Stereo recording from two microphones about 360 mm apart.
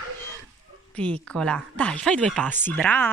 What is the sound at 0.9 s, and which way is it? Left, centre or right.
Speech, centre.